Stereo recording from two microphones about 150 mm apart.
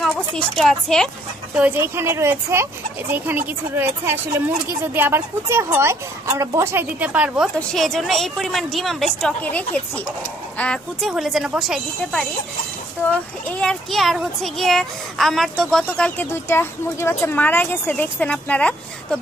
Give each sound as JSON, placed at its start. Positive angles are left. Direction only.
{"t": 0.0, "sound": "speech", "side_deg": 5}
{"t": 1.6, "sound": "a woman's voice", "side_deg": -15}
{"t": 13.6, "sound": "speech", "side_deg": 5}